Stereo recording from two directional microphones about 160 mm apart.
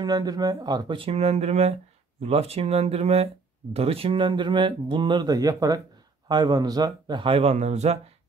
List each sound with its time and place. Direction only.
0.0 s speech: 25° right (ahead or behind); by 8.0 s 45° right (ahead or behind)